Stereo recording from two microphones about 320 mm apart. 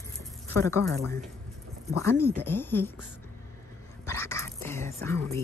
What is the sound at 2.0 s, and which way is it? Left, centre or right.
Speech, centre.